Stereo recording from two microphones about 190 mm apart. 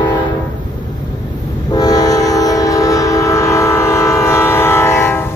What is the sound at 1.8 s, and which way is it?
Train, 20° left (ahead or behind).